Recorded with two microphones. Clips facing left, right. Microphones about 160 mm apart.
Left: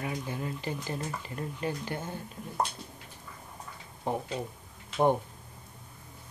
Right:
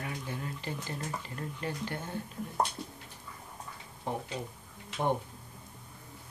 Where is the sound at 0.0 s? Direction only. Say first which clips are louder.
Left 4 dB; 15° left (ahead or behind).